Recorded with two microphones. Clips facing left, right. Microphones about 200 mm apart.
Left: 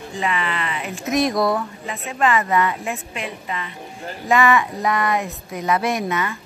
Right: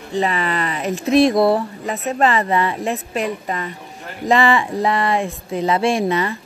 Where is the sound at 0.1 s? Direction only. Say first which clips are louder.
Right 5 dB; 35° right (ahead or behind).